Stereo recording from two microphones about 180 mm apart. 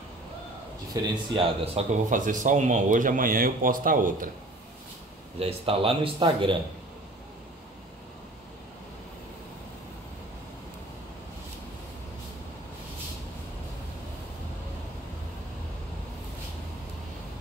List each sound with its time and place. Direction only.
1.0 s speech: 30° right (ahead or behind); by 4.3 s 50° right (ahead or behind)
5.4 s speech: 30° right (ahead or behind)